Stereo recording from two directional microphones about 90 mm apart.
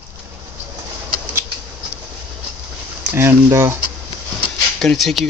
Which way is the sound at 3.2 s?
25° right (ahead or behind).